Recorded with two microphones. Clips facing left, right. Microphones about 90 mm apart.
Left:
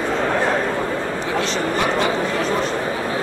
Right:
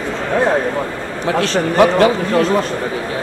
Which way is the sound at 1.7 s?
60° right (ahead or behind).